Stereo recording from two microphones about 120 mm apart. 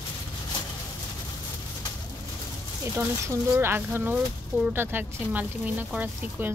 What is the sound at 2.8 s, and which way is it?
Speech, 20° right (ahead or behind).